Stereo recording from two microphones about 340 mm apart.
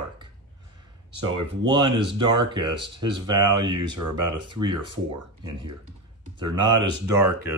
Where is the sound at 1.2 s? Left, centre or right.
Centre.